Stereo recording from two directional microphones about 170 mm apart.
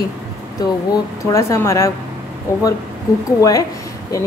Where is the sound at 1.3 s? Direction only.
15° left (ahead or behind).